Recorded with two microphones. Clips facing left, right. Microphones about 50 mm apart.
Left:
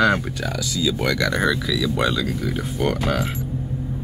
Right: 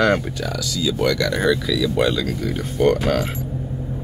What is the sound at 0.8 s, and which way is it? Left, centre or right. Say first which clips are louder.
Speech: right 2 dB; centre.